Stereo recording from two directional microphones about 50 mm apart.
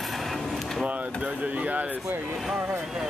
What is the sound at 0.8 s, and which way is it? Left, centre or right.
Speech, right.